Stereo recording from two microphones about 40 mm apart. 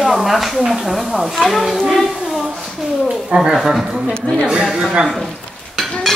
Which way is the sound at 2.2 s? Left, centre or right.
Centre.